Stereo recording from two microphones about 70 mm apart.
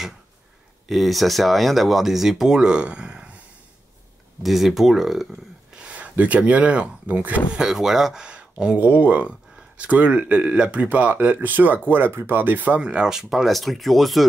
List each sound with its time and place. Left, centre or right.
0.8 s speech: centre
4.4 s speech: centre
5.8 s speech: centre
7.6 s speech: centre